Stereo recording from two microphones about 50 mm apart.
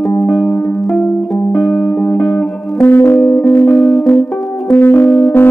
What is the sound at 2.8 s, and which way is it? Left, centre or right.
Music, left.